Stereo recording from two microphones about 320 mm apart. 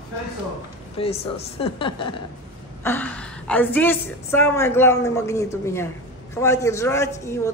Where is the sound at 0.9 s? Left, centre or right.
Centre.